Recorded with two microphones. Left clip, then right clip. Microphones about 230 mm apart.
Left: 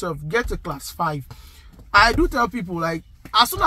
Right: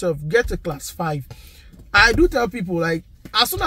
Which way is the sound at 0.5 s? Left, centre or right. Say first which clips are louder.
Right 2 dB; left.